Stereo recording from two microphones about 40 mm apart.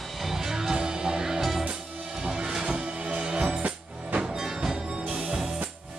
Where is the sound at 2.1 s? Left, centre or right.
Centre.